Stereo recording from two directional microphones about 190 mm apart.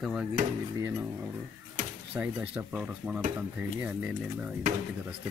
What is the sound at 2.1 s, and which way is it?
Speech, 10° right (ahead or behind).